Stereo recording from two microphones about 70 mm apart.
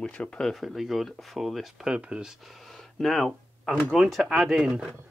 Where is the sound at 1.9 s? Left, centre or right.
Centre.